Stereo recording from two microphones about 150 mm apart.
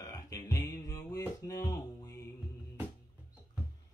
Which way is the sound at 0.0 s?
20° left (ahead or behind).